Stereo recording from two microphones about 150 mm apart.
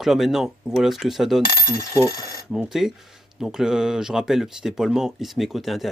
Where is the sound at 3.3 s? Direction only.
5° right (ahead or behind).